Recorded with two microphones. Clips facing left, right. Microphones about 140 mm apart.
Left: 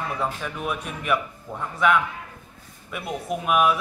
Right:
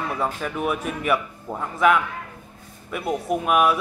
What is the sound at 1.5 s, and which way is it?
Speech, 40° right (ahead or behind).